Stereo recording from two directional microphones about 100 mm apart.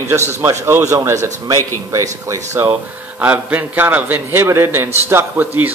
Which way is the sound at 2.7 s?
15° right (ahead or behind).